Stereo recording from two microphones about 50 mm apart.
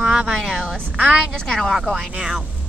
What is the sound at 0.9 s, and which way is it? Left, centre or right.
Speech, centre.